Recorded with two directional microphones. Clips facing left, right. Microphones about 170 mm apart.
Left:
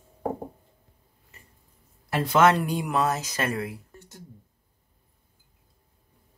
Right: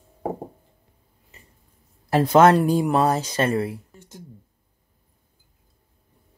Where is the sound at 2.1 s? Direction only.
40° right (ahead or behind).